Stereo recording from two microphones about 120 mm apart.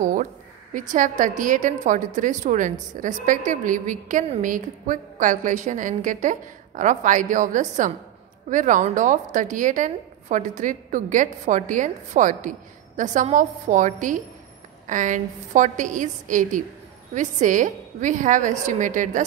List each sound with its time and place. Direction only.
0.0 s a woman's voice: 90° right